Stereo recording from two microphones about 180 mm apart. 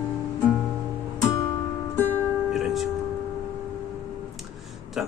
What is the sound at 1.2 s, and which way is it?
Music, 15° left (ahead or behind).